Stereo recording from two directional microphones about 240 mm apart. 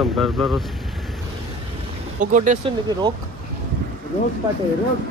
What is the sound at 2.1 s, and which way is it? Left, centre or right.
Speech, right.